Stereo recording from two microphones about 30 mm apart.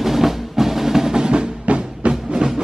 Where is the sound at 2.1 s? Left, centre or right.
Right.